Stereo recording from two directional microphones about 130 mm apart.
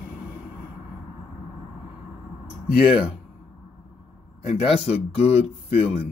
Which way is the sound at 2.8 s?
5° right (ahead or behind).